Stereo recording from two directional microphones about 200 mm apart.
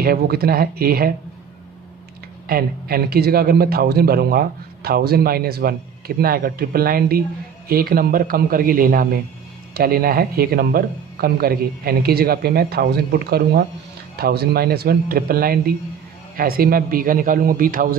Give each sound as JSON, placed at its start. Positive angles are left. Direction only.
{"t": 0.0, "sound": "a man's voice", "side_deg": -50}
{"t": 2.4, "sound": "a man's voice", "side_deg": -50}